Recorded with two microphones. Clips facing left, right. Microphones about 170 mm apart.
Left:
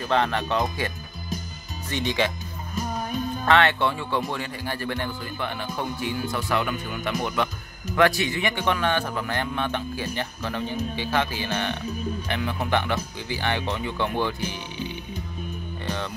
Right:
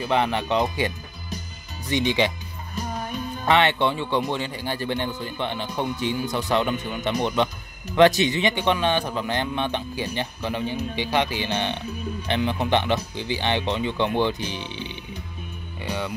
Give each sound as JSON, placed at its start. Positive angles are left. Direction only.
{"t": 0.0, "sound": "speech", "side_deg": -15}
{"t": 3.4, "sound": "speech", "side_deg": -20}
{"t": 15.8, "sound": "music", "side_deg": -10}